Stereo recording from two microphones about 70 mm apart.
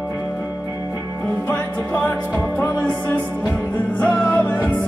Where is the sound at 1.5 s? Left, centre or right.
Left.